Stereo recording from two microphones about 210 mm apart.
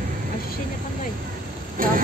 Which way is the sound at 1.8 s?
40° right (ahead or behind).